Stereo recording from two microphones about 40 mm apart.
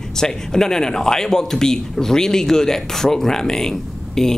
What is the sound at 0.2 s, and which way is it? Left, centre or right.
A man's voice, centre.